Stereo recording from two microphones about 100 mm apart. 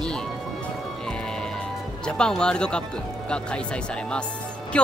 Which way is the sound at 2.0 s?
10° left (ahead or behind).